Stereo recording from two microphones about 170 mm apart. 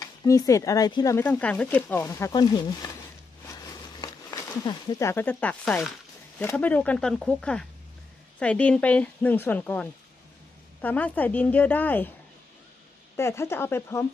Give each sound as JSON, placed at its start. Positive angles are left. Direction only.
{"t": 0.0, "sound": "speech", "side_deg": 20}
{"t": 13.1, "sound": "speech", "side_deg": 15}